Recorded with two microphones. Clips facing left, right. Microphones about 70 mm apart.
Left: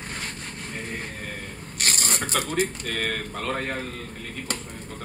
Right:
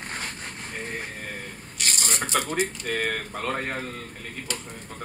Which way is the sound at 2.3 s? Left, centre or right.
Centre.